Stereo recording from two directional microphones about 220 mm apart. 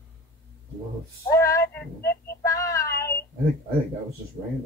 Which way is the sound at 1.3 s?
15° left (ahead or behind).